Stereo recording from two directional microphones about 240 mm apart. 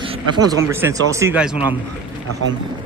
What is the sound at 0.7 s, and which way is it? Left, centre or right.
Speech, centre.